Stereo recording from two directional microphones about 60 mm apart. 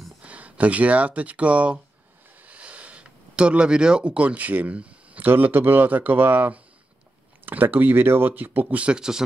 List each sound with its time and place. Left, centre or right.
0.2 s speech: right